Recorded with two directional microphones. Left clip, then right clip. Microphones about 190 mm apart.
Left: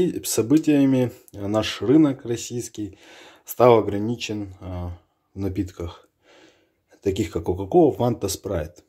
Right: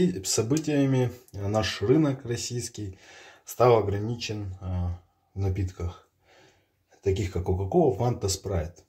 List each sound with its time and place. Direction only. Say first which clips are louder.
0.0 s speech: left 4 dB; 35° left (ahead or behind)
7.0 s speech: left 4 dB; 45° left (ahead or behind)